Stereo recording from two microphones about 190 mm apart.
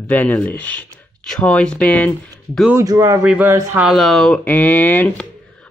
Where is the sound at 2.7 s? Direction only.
20° right (ahead or behind).